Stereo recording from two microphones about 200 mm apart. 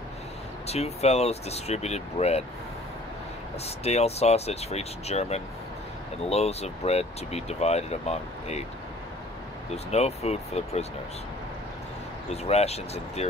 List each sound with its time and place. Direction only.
0.7 s speech: 30° left (ahead or behind)
3.6 s speech: 30° left (ahead or behind)
9.8 s speech: 30° left (ahead or behind)
12.4 s speech: 30° left (ahead or behind)